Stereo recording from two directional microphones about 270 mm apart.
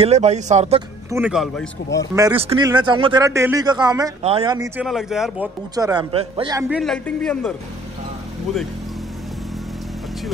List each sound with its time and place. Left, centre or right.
0.0 s speech: right
1.1 s speech: centre
2.1 s speech: centre
4.8 s speech: centre
5.8 s speech: centre
6.7 s speech: centre